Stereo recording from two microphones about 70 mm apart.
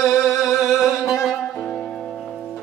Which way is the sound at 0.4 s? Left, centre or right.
Centre.